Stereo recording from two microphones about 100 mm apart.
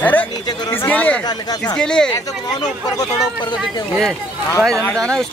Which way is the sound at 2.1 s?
40° left (ahead or behind).